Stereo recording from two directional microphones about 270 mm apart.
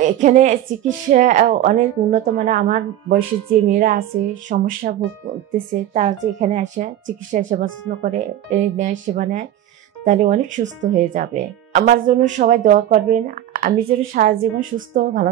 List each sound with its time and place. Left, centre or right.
0.0 s speech: right